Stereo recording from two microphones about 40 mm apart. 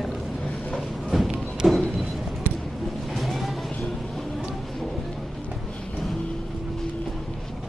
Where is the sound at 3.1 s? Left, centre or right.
Centre.